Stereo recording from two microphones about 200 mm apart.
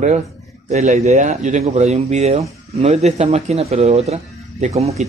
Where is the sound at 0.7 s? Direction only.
35° right (ahead or behind).